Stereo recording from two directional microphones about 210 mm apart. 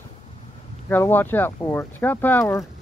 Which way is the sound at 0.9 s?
10° left (ahead or behind).